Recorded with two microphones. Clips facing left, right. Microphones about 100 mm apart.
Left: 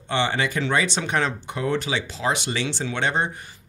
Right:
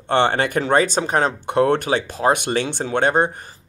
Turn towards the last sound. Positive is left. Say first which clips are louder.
# right 6 dB
turn(degrees=-45)  # may be behind; listen again after turning